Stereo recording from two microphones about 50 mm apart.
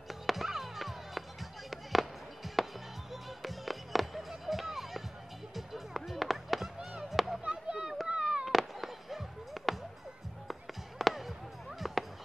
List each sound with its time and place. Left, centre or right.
0.1 s music: centre
7.1 s chop: centre
7.4 s a sound: centre
8.5 s fireworks: centre
11.8 s music: centre